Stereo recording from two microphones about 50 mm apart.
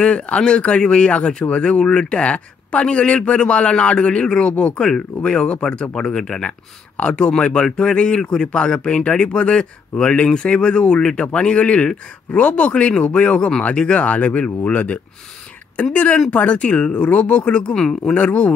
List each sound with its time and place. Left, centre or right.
0.0 s a man's voice: centre
18.1 s a man's voice: left